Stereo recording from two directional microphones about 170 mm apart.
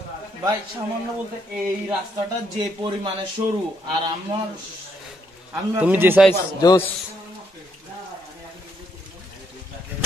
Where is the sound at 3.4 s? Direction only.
40° right (ahead or behind).